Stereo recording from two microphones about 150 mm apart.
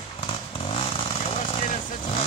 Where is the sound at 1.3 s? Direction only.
50° left (ahead or behind).